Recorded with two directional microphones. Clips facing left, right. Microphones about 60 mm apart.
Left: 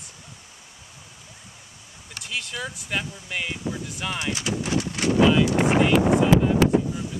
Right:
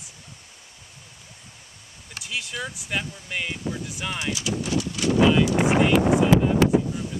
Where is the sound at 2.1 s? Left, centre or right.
Centre.